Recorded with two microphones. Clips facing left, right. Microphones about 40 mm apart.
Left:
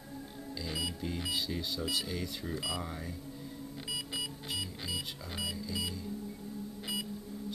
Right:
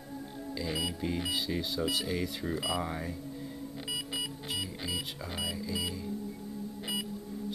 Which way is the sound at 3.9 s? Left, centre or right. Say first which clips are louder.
Right 2 dB; centre.